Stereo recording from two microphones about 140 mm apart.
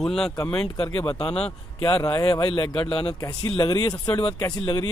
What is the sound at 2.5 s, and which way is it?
Speech, 40° left (ahead or behind).